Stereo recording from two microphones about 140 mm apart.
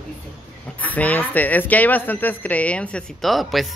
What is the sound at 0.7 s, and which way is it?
Speech, 10° left (ahead or behind).